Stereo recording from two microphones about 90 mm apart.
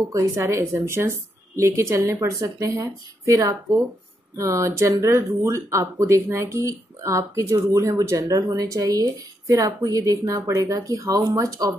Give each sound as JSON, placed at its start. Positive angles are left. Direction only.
{"t": 0.1, "sound": "a woman's voice", "side_deg": -35}